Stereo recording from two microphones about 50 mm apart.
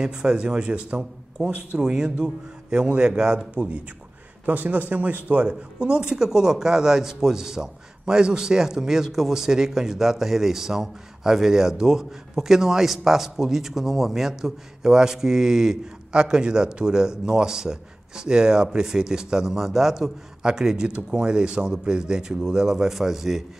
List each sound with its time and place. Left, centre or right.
0.0 s a man's voice: centre
4.5 s speech: right; by 23.4 s centre